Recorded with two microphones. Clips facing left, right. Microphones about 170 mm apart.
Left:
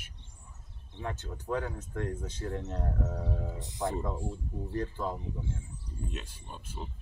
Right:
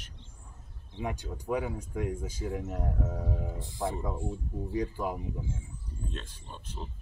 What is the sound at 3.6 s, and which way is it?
Speech, 20° left (ahead or behind).